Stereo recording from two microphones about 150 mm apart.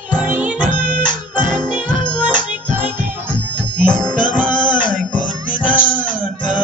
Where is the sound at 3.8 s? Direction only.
5° left (ahead or behind).